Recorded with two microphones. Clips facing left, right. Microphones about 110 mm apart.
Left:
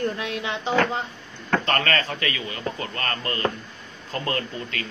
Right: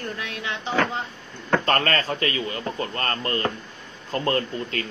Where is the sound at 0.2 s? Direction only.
25° left (ahead or behind).